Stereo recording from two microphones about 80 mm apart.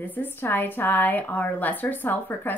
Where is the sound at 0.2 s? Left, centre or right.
Left.